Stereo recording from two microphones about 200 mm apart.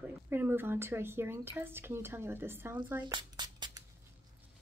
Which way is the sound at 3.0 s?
20° right (ahead or behind).